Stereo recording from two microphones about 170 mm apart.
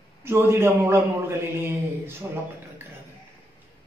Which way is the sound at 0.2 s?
15° right (ahead or behind).